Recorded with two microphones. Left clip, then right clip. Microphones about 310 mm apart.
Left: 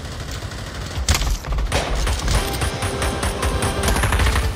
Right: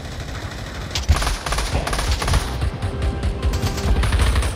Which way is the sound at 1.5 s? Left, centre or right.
Right.